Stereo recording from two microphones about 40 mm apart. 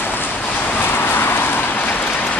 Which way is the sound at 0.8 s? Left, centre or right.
Left.